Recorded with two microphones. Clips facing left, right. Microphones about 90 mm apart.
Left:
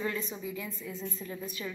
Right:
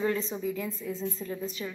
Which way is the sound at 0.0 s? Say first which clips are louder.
Right 6 dB; 30° right (ahead or behind).